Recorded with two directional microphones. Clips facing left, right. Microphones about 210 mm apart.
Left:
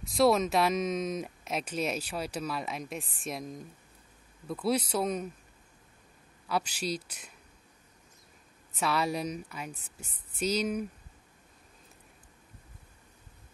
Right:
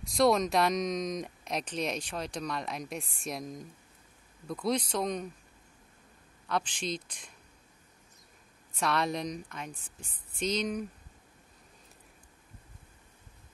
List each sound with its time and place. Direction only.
0.0 s speech: centre (ahead or behind)
6.4 s speech: 5° left (ahead or behind)
8.7 s speech: 5° left (ahead or behind)